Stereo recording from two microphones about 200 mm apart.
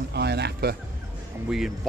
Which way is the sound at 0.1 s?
55° right (ahead or behind).